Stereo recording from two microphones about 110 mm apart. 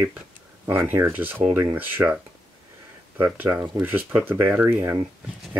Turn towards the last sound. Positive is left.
turn(degrees=-20)  # may be behind; listen again after turning